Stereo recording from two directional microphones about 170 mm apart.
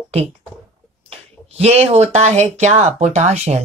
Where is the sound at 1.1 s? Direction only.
35° right (ahead or behind).